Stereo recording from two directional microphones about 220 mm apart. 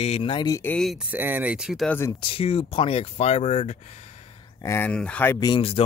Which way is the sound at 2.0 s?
20° left (ahead or behind).